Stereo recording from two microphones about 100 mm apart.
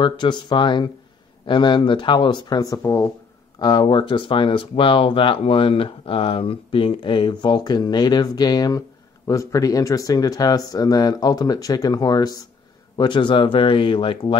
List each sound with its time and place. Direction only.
0.0 s speech: 50° left (ahead or behind); by 3.1 s 30° left (ahead or behind)
3.5 s speech: 45° left (ahead or behind)
7.4 s speech: 45° left (ahead or behind); by 14.3 s 60° left (ahead or behind)